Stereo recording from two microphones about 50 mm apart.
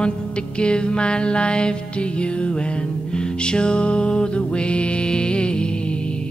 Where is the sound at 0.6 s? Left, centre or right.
Centre.